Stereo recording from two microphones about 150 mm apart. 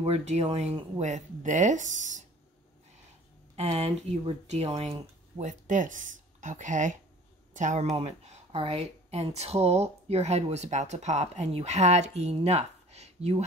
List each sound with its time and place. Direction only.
0.0 s speech: 45° right (ahead or behind)
3.5 s speech: 45° right (ahead or behind)
7.9 s speech: 40° right (ahead or behind)